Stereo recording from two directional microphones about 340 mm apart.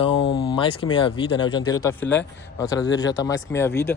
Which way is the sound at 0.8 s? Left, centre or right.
Centre.